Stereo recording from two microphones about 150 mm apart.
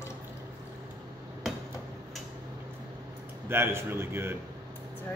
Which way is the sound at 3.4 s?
15° right (ahead or behind).